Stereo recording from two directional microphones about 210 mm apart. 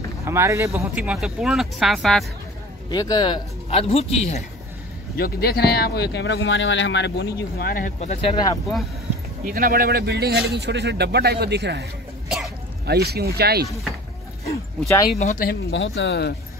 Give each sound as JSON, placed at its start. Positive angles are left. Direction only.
{"t": 0.2, "sound": "speech", "side_deg": -15}
{"t": 2.9, "sound": "speech", "side_deg": 20}
{"t": 5.1, "sound": "speech", "side_deg": 45}
{"t": 9.4, "sound": "speech", "side_deg": -45}
{"t": 12.3, "sound": "sneeze", "side_deg": 0}
{"t": 12.8, "sound": "speech", "side_deg": -50}
{"t": 15.1, "sound": "speech", "side_deg": 40}
{"t": 15.7, "sound": "speech", "side_deg": 60}